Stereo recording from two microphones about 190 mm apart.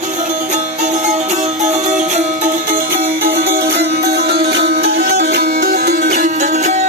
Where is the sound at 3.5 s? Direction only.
55° right (ahead or behind).